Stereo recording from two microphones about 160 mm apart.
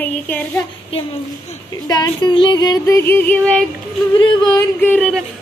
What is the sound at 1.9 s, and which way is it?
Speech, 25° left (ahead or behind).